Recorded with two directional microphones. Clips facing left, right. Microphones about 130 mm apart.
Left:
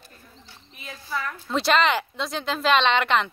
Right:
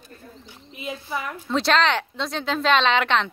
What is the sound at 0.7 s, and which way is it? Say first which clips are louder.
Speech: right 3 dB; 20° right (ahead or behind).